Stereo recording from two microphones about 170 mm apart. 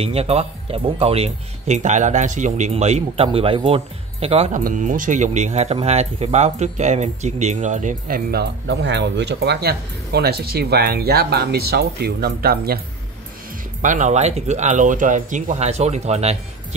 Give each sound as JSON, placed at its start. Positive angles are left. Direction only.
{"t": 0.0, "sound": "speech", "side_deg": -35}
{"t": 13.8, "sound": "speech", "side_deg": -45}